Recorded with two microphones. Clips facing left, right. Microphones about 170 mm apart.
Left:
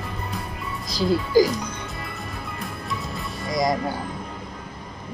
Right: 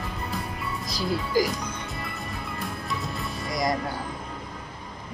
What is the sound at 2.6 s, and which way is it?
Music, centre (ahead or behind).